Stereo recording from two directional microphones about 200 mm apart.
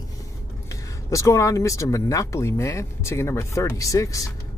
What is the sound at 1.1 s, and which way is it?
Speech, 15° left (ahead or behind).